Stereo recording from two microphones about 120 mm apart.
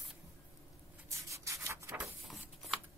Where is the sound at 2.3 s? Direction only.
Centre (ahead or behind).